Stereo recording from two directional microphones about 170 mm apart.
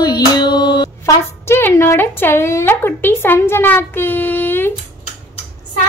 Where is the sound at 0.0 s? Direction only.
25° left (ahead or behind).